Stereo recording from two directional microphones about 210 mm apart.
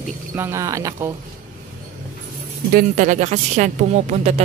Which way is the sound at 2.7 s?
35° right (ahead or behind).